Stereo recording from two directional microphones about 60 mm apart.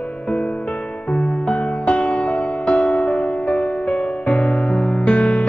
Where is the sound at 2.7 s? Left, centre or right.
Centre.